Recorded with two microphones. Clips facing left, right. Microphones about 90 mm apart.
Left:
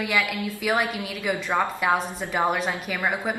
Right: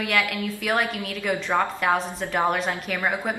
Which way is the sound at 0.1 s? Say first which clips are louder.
Right 1 dB; 5° left (ahead or behind).